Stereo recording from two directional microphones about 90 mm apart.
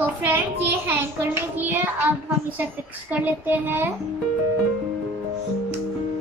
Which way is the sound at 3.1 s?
20° right (ahead or behind).